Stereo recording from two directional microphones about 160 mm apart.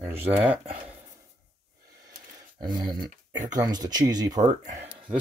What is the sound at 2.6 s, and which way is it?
Speech, 25° right (ahead or behind).